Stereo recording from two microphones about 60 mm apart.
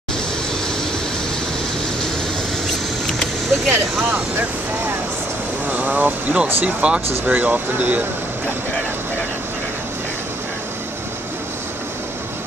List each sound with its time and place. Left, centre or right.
3.6 s speech: right